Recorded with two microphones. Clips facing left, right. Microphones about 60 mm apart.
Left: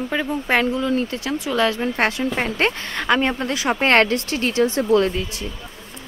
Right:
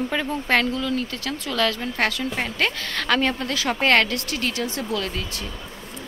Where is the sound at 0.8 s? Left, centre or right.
Left.